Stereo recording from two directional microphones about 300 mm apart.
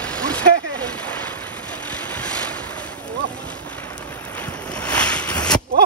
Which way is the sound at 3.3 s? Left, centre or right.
Centre.